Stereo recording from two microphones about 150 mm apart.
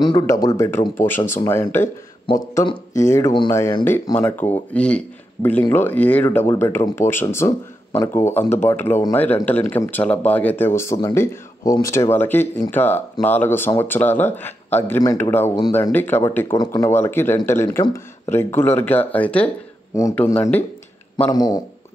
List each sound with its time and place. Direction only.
0.0 s speech: 25° left (ahead or behind)
2.5 s speech: 25° left (ahead or behind); by 19.5 s 10° left (ahead or behind)
21.3 s speech: 25° left (ahead or behind)